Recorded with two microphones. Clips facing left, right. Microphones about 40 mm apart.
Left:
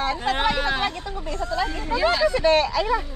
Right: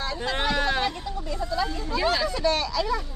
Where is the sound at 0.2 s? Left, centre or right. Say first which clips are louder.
Right 1 dB; centre.